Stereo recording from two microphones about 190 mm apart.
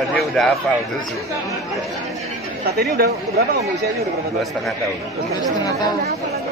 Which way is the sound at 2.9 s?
55° right (ahead or behind).